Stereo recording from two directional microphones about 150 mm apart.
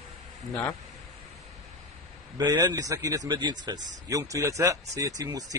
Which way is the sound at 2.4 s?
25° right (ahead or behind).